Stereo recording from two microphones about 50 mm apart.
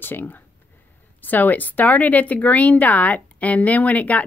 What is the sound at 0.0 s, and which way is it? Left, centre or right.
Speech, left.